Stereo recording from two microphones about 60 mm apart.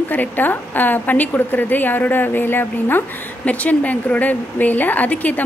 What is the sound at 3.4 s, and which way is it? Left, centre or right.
Speech, left.